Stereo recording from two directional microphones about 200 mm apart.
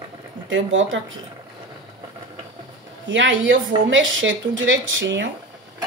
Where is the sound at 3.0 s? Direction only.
65° right (ahead or behind).